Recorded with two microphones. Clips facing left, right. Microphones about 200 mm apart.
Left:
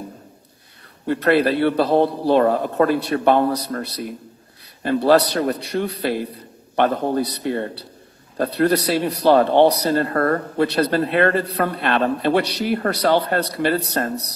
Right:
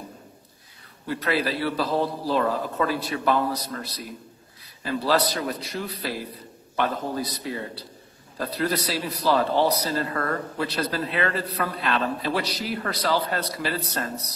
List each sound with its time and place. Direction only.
1.0 s speech: 60° left (ahead or behind)